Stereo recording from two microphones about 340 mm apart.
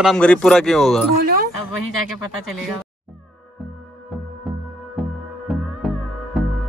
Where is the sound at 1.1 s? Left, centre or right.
Right.